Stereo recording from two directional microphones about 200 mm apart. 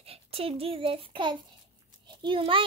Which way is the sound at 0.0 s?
30° right (ahead or behind).